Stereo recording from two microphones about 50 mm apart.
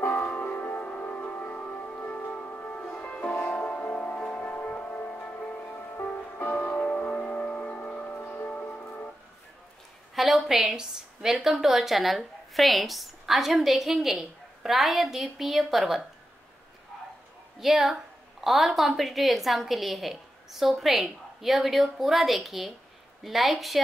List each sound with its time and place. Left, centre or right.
0.2 s music: left
0.5 s music: left
0.7 s music: left
5.6 s music: left
8.1 s music: left
10.1 s a woman's voice: centre
17.6 s a woman's voice: centre